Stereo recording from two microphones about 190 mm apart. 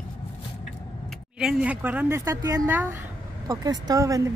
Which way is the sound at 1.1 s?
5° right (ahead or behind).